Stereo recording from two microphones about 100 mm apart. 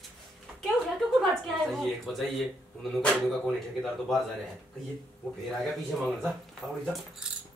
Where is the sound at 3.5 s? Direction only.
5° left (ahead or behind).